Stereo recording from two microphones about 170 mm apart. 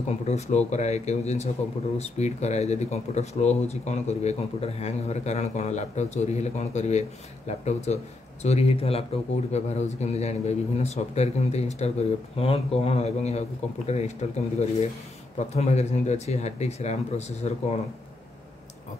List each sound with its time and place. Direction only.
0.1 s speech: 40° left (ahead or behind)
15.3 s speech: 40° left (ahead or behind)